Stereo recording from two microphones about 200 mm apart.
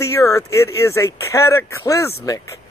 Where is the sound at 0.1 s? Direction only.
15° left (ahead or behind).